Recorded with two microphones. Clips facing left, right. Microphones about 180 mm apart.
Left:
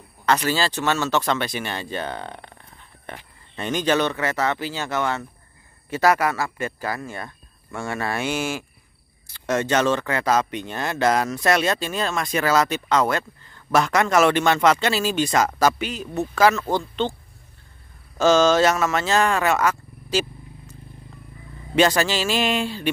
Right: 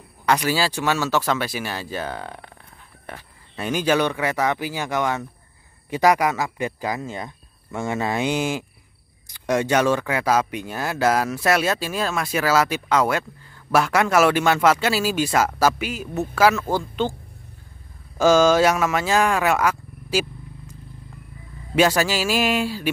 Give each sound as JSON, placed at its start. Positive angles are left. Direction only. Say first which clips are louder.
{"t": 0.2, "sound": "speech", "louder": "right 1 dB", "side_deg": -10}
{"t": 18.1, "sound": "speech", "louder": "right 1 dB", "side_deg": -10}
{"t": 21.7, "sound": "speech", "louder": "even", "side_deg": -10}